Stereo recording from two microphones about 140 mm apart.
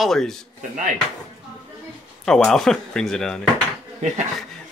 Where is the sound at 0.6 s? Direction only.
65° right (ahead or behind).